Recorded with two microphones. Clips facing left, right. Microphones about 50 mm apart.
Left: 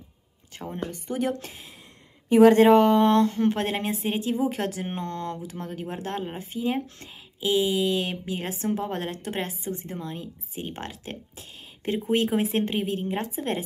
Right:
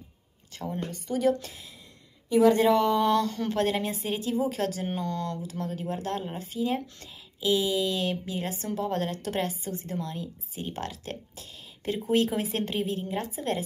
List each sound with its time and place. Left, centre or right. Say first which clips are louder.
0.5 s a woman's voice: left 1 dB; left
2.2 s a woman's voice: left 5 dB; left